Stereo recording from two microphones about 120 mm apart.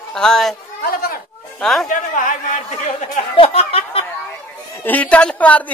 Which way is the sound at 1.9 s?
90° left.